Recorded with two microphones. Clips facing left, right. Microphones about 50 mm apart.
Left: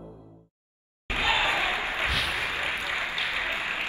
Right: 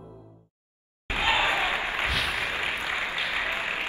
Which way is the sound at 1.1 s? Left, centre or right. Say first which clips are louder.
Right 1 dB; right.